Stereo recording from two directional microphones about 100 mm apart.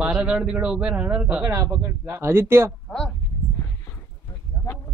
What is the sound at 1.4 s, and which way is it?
A man's voice, 35° right (ahead or behind).